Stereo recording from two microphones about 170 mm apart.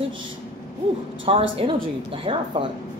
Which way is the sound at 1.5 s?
30° right (ahead or behind).